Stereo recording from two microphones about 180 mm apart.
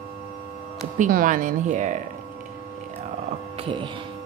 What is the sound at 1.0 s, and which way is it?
Music, 45° right (ahead or behind).